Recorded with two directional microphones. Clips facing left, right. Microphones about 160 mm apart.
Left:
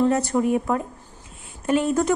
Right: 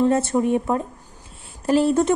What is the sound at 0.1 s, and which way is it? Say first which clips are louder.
Speech: right 1 dB; 25° right (ahead or behind).